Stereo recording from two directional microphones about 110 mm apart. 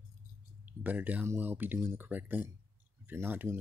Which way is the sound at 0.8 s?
15° right (ahead or behind).